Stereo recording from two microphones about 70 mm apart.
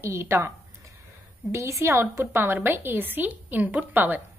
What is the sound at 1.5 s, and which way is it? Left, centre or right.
A woman's voice, right.